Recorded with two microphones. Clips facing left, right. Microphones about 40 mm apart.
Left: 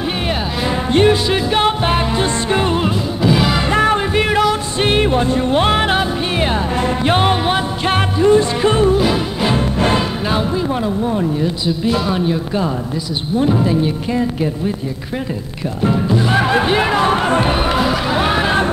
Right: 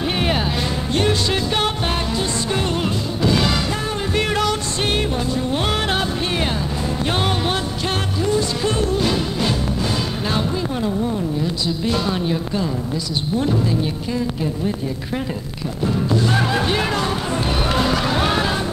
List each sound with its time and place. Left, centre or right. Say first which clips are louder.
0.7 s music: left 11 dB; left
3.2 s music: left 3 dB; centre
3.7 s music: left 11 dB; left
4.1 s music: left 5 dB; left
4.7 s music: left 6 dB; left
5.9 s music: left 4 dB; centre
8.9 s music: left 4 dB; centre
10.3 s a sound: left 5 dB; left
11.8 s speech: left 5 dB; centre
13.6 s music: left 5 dB; left
16.2 s speech: left 5 dB; left
17.0 s music: left 8 dB; left
17.5 s speech: left 4 dB; left
17.7 s speech: left 3 dB; centre